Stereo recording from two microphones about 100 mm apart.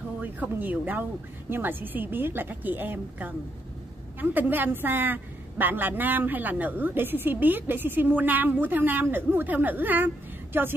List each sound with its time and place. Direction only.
0.2 s a woman's voice: 20° right (ahead or behind)